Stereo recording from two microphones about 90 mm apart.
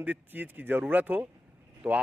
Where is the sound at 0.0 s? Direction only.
20° right (ahead or behind).